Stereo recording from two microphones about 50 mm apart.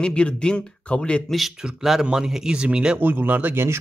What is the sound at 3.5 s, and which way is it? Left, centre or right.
Speech, right.